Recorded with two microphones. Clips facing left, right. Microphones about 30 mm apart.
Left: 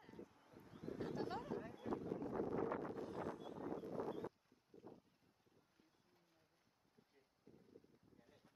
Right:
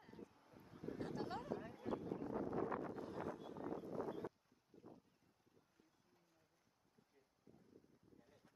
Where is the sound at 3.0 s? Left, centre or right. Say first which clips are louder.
Left 1 dB; centre.